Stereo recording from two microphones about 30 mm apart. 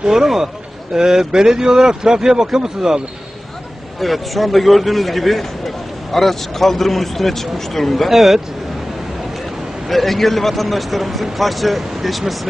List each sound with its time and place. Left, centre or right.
0.1 s speech: centre
0.9 s a man's voice: right
4.0 s a man's voice: centre
8.1 s speech: centre
9.8 s a man's voice: centre